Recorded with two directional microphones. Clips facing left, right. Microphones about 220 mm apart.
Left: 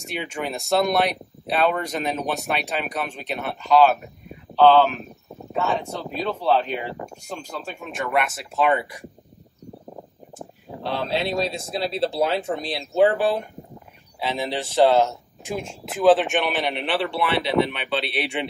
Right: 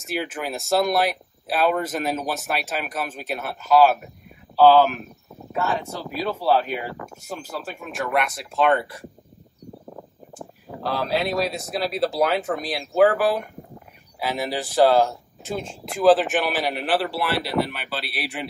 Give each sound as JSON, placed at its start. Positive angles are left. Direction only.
{"t": 0.0, "sound": "speech", "side_deg": 0}
{"t": 9.9, "sound": "a sound", "side_deg": 20}
{"t": 12.2, "sound": "speech", "side_deg": 25}